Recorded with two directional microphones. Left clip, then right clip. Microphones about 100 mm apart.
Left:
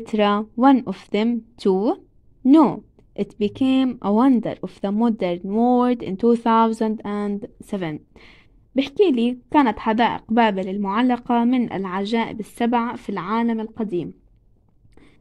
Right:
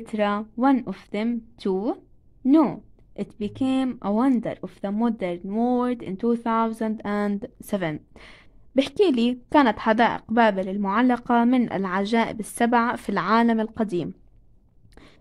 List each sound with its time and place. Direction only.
0.0 s a woman's voice: 20° left (ahead or behind)
7.0 s a woman's voice: 5° right (ahead or behind); by 14.1 s 20° right (ahead or behind)